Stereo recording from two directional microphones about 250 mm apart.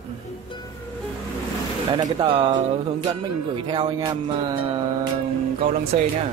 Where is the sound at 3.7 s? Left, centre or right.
Centre.